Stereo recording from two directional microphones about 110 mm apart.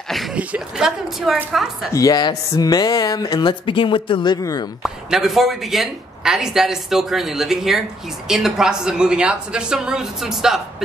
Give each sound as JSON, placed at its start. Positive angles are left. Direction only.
{"t": 0.1, "sound": "speech", "side_deg": 0}
{"t": 1.9, "sound": "speech", "side_deg": 30}
{"t": 4.8, "sound": "a woman's voice", "side_deg": -5}